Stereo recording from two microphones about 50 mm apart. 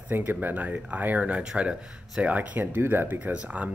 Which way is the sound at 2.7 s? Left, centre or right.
Right.